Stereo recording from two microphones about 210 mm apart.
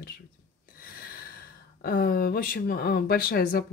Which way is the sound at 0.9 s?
45° left (ahead or behind).